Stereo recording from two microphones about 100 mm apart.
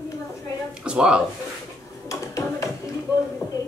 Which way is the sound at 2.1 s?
30° left (ahead or behind).